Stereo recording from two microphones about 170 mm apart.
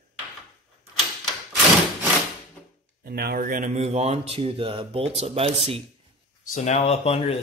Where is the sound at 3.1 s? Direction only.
65° right (ahead or behind).